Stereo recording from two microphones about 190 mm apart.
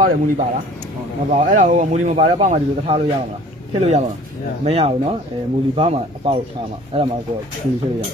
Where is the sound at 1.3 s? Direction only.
40° right (ahead or behind).